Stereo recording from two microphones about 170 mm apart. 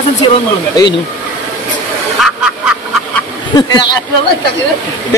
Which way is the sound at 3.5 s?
20° left (ahead or behind).